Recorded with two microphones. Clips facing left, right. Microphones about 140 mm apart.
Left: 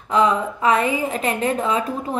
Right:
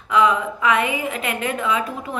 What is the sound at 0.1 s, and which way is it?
A woman's voice, 35° left (ahead or behind).